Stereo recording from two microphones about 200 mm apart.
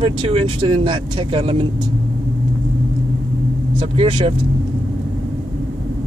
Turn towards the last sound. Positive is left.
turn(degrees=-25)  # may be behind; listen again after turning